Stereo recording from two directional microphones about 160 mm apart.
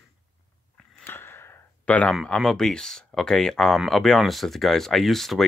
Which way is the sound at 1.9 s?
10° left (ahead or behind).